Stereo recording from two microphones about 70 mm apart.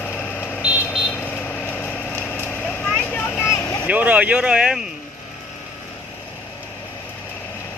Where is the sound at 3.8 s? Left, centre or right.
Right.